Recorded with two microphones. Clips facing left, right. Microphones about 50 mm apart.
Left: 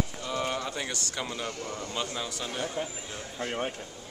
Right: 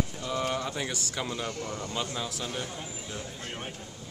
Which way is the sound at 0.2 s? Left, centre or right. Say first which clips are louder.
Right 1 dB; centre.